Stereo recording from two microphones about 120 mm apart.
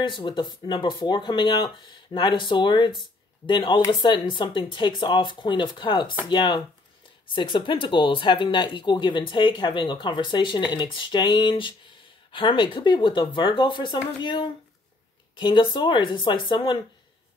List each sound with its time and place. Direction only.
0.2 s speech: 40° left (ahead or behind)